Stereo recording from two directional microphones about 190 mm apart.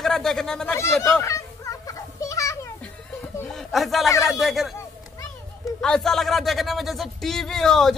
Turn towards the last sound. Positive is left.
turn(degrees=0)  # may be behind; listen again after turning